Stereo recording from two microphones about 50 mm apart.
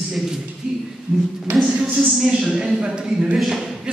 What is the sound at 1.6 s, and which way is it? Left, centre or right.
Speech, centre.